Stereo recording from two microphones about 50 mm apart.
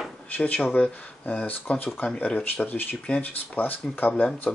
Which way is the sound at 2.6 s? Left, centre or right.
Left.